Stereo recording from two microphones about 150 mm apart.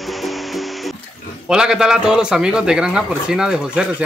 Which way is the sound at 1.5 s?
5° right (ahead or behind).